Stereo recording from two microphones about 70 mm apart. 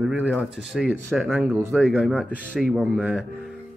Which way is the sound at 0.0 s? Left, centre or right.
Centre.